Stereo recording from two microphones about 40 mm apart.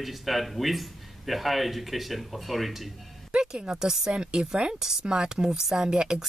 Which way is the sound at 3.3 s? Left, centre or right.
Right.